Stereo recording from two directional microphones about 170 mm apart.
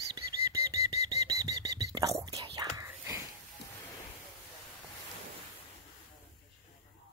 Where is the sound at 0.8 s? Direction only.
20° right (ahead or behind).